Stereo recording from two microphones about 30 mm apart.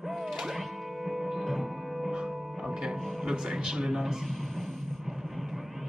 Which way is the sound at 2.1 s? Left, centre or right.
Right.